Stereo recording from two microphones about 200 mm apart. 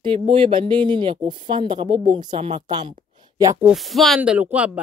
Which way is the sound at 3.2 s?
15° right (ahead or behind).